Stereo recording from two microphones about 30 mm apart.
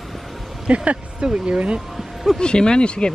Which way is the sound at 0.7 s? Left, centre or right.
Right.